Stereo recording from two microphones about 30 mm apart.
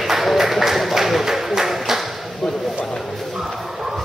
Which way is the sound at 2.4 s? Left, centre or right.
Left.